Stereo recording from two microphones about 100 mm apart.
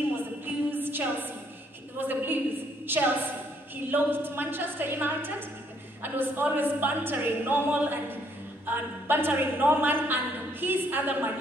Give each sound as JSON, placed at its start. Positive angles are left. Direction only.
{"t": 0.1, "sound": "a sound", "side_deg": -20}
{"t": 2.0, "sound": "a woman's voice", "side_deg": -20}
{"t": 3.7, "sound": "a woman's voice", "side_deg": -20}